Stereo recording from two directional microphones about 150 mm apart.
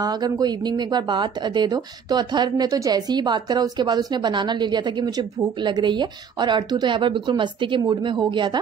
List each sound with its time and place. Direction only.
0.0 s speech: 25° right (ahead or behind)